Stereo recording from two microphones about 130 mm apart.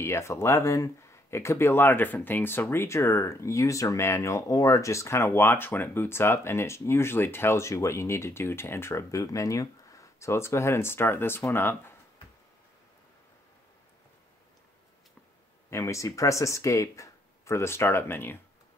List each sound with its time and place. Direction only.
0.0 s speech: 20° left (ahead or behind)
15.7 s speech: 25° left (ahead or behind)